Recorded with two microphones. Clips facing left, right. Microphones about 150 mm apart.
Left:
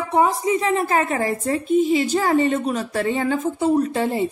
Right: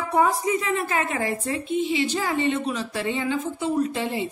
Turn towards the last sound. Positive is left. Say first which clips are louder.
# left 4 dB
turn(degrees=45)  # may be behind; listen again after turning